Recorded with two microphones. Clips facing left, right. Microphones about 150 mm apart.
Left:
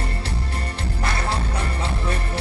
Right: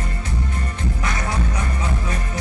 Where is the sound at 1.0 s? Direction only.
30° left (ahead or behind).